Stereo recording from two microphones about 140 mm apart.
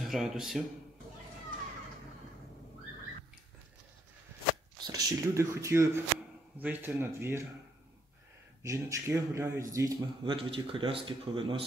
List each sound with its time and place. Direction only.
0.0 s speech: centre (ahead or behind)
4.7 s speech: 30° right (ahead or behind)
8.6 s speech: 20° right (ahead or behind)
10.2 s speech: 40° right (ahead or behind)